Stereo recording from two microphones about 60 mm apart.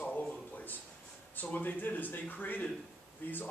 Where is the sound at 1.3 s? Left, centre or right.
Left.